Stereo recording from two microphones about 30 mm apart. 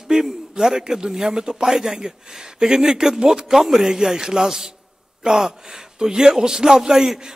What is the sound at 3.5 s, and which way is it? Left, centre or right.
A man's voice, centre.